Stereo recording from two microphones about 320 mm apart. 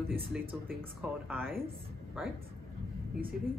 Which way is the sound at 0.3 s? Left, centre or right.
Centre.